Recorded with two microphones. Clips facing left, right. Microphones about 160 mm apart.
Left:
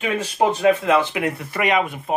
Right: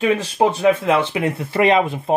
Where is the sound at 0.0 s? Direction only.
30° right (ahead or behind).